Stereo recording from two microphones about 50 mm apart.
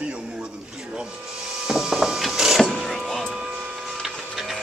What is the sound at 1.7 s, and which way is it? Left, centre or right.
Printer, centre.